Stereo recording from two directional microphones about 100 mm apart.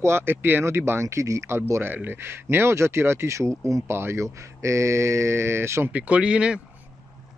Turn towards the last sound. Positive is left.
turn(degrees=-10)  # may be behind; listen again after turning